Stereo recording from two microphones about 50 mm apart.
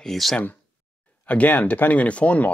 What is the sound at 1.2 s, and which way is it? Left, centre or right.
Speech, left.